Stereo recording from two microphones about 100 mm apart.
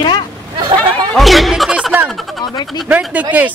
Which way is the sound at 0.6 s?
50° right (ahead or behind).